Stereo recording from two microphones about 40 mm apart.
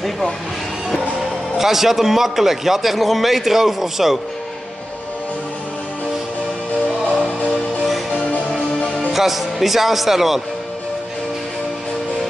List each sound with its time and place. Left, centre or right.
1.6 s a man's voice: centre
8.3 s music: left
9.1 s a man's voice: centre